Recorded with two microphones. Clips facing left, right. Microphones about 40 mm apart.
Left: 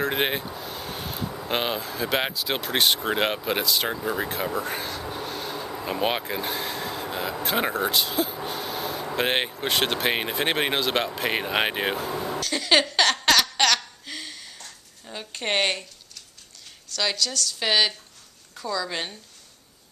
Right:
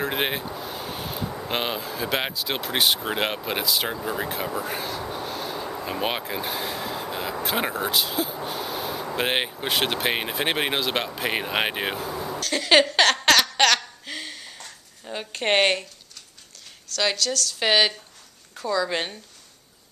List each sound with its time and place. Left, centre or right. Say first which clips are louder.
0.0 s speech: left 1 dB; centre
12.4 s a sound: right 3 dB; centre
16.9 s speech: right 2 dB; centre
17.6 s speech: right 2 dB; centre